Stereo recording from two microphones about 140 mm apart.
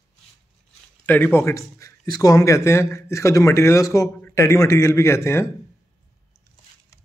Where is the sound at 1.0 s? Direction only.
15° left (ahead or behind).